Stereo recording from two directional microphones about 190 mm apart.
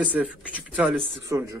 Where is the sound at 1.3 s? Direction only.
15° right (ahead or behind).